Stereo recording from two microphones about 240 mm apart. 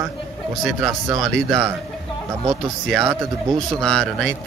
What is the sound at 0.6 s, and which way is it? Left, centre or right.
Speech, centre.